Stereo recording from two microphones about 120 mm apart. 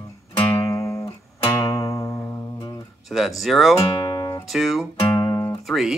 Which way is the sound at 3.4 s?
Centre (ahead or behind).